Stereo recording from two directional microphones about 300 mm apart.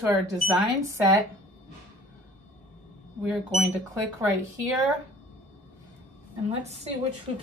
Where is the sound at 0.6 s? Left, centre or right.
Centre.